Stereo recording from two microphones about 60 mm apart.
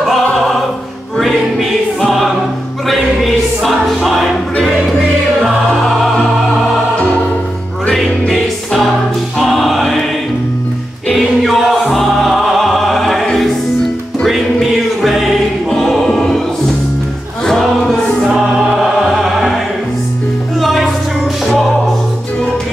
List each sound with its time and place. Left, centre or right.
1.1 s music: centre
3.6 s music: centre
5.4 s music: centre
7.0 s music: left
7.9 s music: centre
11.1 s music: centre
15.0 s music: centre
15.7 s choir: centre
17.5 s choir: centre
18.3 s music: centre
20.6 s music: centre